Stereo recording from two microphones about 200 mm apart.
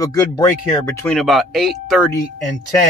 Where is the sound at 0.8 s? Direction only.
5° left (ahead or behind).